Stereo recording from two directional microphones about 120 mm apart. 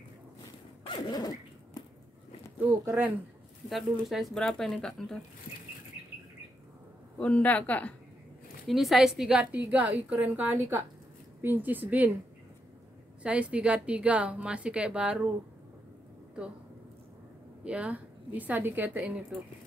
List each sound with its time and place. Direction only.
0.8 s zipper: 40° left (ahead or behind)
2.6 s a woman's voice: 15° right (ahead or behind)
3.6 s speech: centre (ahead or behind)
7.2 s a man's voice: 10° left (ahead or behind)
8.6 s a woman's voice: centre (ahead or behind)
13.2 s a woman's voice: 10° right (ahead or behind)
17.6 s a woman's voice: 10° right (ahead or behind)